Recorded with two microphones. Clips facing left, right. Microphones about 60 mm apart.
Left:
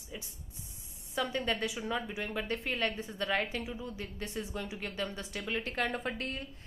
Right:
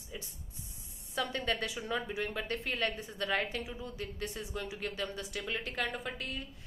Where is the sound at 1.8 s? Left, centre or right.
Centre.